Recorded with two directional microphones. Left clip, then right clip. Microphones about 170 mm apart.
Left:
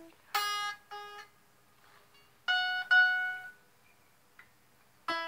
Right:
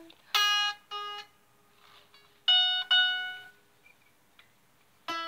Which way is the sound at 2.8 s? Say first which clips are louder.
Even; 45° right (ahead or behind).